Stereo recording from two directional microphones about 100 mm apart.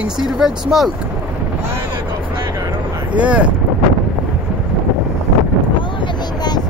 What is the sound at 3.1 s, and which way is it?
Speech, 15° right (ahead or behind).